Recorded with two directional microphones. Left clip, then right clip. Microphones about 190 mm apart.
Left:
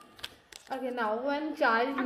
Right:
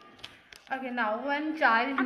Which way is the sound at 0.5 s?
50° left (ahead or behind).